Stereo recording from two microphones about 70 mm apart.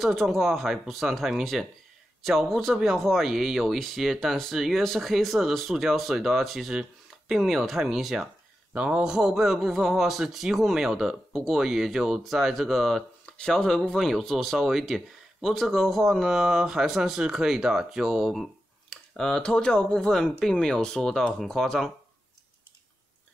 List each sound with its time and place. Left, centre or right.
0.0 s speech: centre
8.7 s speech: centre
18.9 s speech: centre